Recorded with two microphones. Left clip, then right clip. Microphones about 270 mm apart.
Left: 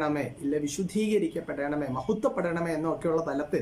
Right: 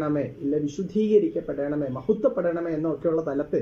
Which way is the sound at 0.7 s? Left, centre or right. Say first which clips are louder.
Right 5 dB; centre.